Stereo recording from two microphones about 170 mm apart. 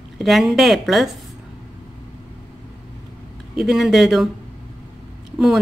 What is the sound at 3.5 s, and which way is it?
Speech, centre (ahead or behind).